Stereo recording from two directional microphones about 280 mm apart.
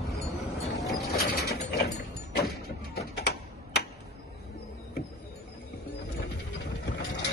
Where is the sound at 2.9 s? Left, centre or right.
Left.